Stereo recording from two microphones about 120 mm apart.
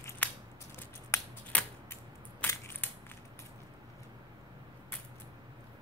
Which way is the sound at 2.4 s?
15° left (ahead or behind).